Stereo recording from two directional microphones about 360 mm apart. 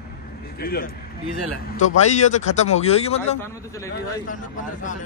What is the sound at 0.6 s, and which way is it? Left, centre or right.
Speech, left.